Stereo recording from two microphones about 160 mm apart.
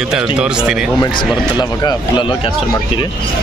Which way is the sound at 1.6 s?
25° left (ahead or behind).